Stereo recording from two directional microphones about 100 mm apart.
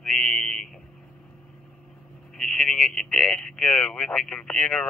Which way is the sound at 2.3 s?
5° left (ahead or behind).